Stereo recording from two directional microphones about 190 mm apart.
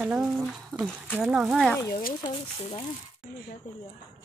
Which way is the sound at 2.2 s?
25° left (ahead or behind).